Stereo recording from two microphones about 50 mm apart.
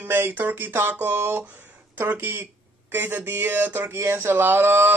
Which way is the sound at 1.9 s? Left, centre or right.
Right.